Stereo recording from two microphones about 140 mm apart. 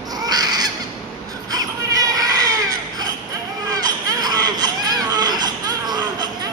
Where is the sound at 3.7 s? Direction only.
25° right (ahead or behind).